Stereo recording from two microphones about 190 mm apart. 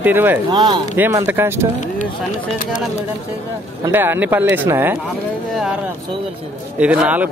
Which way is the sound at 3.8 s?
10° right (ahead or behind).